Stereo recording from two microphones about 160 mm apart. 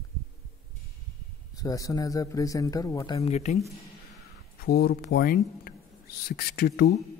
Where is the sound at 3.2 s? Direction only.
45° left (ahead or behind).